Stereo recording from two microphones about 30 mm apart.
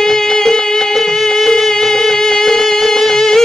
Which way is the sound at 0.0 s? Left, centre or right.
Centre.